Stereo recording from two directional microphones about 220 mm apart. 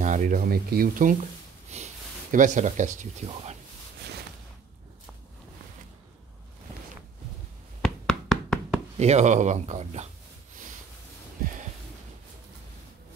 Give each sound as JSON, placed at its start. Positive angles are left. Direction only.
{"t": 0.0, "sound": "speech", "side_deg": -35}
{"t": 1.7, "sound": "speech", "side_deg": -30}
{"t": 7.8, "sound": "knock", "side_deg": 0}
{"t": 8.9, "sound": "speech", "side_deg": -30}